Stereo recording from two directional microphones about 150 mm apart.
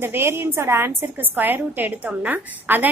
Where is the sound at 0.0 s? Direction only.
15° right (ahead or behind).